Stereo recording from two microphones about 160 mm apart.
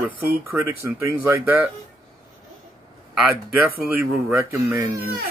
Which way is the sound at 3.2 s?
10° right (ahead or behind).